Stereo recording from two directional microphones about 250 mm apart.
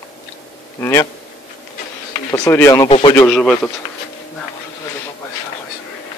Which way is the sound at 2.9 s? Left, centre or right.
Left.